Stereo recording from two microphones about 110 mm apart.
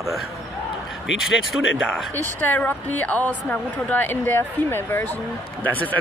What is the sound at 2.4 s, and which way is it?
A woman's voice, 15° left (ahead or behind).